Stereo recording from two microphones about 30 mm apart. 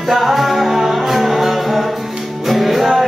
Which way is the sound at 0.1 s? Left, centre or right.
Centre.